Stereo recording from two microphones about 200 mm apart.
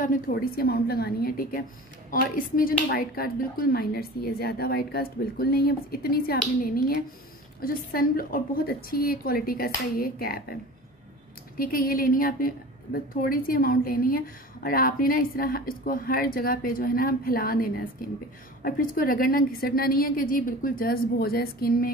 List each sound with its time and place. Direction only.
0.0 s a woman's voice: 45° left (ahead or behind)